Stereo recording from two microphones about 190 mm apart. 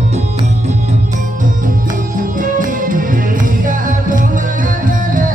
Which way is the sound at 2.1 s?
45° right (ahead or behind).